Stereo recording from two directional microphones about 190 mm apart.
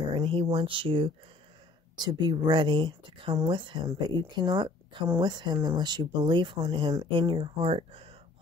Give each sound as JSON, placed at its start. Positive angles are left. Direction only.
{"t": 0.1, "sound": "speech", "side_deg": -25}